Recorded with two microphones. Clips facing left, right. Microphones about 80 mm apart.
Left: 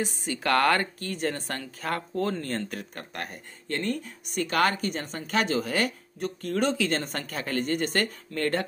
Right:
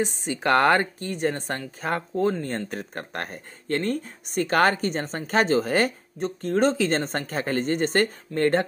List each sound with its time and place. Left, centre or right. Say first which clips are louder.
0.0 s a woman's voice: right 4 dB; right